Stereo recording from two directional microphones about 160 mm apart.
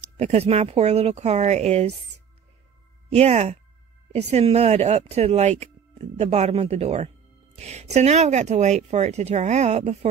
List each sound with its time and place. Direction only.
0.2 s speech: 40° right (ahead or behind)
3.1 s speech: 40° right (ahead or behind)